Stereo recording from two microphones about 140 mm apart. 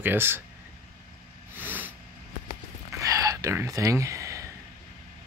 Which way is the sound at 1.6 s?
10° right (ahead or behind).